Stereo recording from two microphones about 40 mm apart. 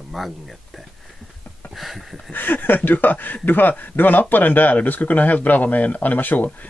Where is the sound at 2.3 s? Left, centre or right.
Left.